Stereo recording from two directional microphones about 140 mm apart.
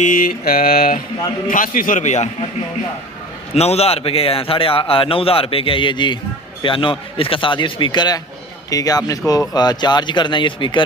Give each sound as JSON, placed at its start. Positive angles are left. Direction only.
{"t": 0.0, "sound": "mantra", "side_deg": 75}
{"t": 1.5, "sound": "a man's voice", "side_deg": 75}
{"t": 3.5, "sound": "a man's voice", "side_deg": 50}